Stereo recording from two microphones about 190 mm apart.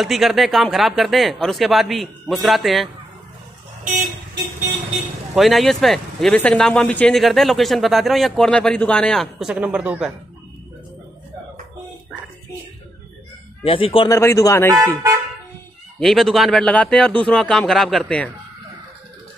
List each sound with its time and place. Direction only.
0.0 s speech: centre (ahead or behind)
5.3 s speech: centre (ahead or behind)
13.7 s speech: 30° left (ahead or behind)
14.1 s speech: 15° left (ahead or behind)
16.0 s speech: centre (ahead or behind)